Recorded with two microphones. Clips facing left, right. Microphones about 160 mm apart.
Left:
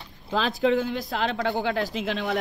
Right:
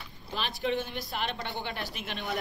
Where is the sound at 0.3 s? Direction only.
90° left.